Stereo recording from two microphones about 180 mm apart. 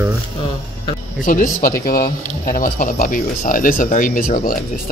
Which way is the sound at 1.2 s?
50° left (ahead or behind).